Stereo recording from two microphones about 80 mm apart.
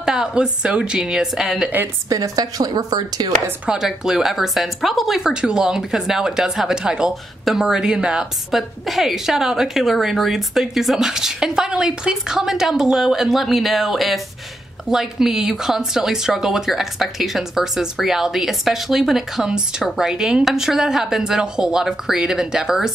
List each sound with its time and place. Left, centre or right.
0.0 s a woman's voice: centre
2.0 s a woman's voice: right
3.6 s speech: centre